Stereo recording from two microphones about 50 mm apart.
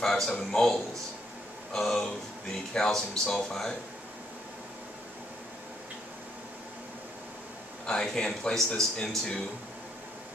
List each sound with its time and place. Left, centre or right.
0.0 s speech: centre
7.8 s speech: centre